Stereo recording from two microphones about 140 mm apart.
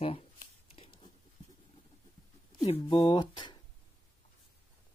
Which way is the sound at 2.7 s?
35° left (ahead or behind).